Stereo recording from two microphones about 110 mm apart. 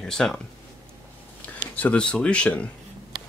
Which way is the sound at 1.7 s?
10° left (ahead or behind).